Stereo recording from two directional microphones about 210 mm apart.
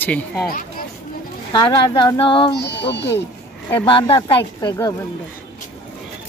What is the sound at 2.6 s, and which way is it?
Speech, 55° left (ahead or behind).